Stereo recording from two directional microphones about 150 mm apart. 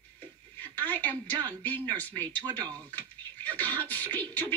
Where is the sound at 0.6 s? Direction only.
10° left (ahead or behind).